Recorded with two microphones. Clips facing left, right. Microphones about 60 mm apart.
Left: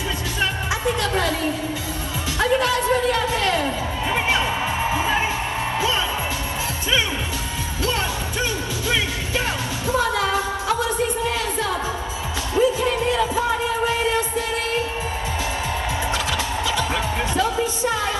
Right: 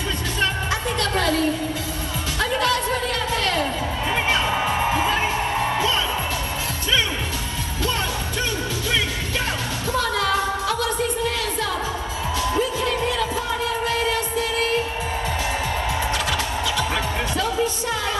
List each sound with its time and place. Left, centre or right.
0.4 s music: centre
2.4 s a sound: centre
5.0 s music: centre
9.8 s music: centre
12.5 s music: centre